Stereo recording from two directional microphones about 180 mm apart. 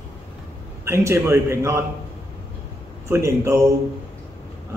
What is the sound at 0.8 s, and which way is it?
Speech, 15° right (ahead or behind).